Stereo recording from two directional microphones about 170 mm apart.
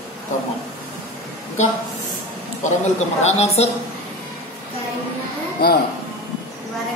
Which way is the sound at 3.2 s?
40° left (ahead or behind).